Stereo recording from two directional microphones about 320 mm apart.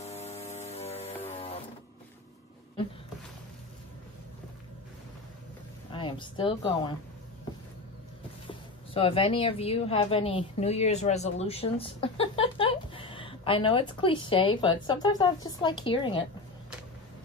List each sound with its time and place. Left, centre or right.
0.0 s mains hum: centre
1.3 s music: centre
5.9 s a woman's voice: centre
8.5 s a woman's voice: centre